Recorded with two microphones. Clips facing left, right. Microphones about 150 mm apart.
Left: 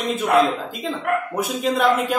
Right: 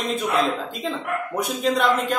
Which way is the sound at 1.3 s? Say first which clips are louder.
Left 1 dB; centre (ahead or behind).